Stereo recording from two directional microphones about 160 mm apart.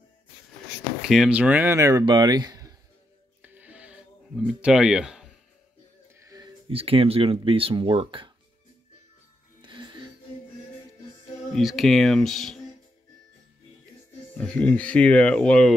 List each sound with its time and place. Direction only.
1.0 s speech: centre (ahead or behind); by 2.7 s 25° right (ahead or behind)
3.4 s music: 10° right (ahead or behind)
4.5 s speech: 5° right (ahead or behind)
6.7 s speech: 35° right (ahead or behind)
9.6 s music: 30° right (ahead or behind)
11.5 s speech: centre (ahead or behind)
14.3 s speech: 5° left (ahead or behind)